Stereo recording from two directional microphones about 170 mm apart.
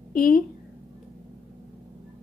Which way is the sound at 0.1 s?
55° left (ahead or behind).